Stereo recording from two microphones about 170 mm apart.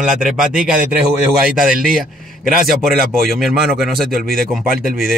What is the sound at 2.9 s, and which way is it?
Speech, 60° right (ahead or behind).